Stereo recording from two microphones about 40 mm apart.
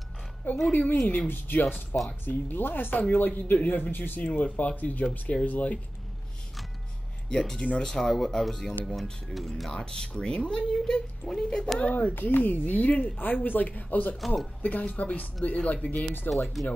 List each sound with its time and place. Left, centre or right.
0.7 s speech: left
1.2 s speech: left
4.2 s speech: left
5.5 s speech: left
7.2 s speech: centre
7.8 s speech: centre; by 11.0 s left
11.2 s speech: centre
11.9 s speech: left
14.2 s speech: centre
14.6 s speech: left
16.6 s speech: centre